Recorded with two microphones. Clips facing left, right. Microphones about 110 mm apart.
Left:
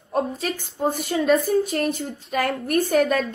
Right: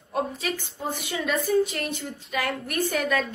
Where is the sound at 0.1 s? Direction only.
45° left (ahead or behind).